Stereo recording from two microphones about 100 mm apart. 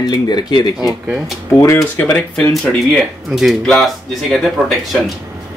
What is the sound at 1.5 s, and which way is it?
Speech, 30° left (ahead or behind).